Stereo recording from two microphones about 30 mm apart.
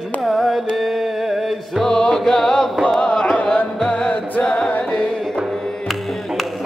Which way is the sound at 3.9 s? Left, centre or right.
Left.